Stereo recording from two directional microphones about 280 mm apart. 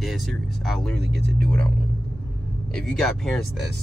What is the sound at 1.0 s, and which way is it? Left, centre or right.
Speech, right.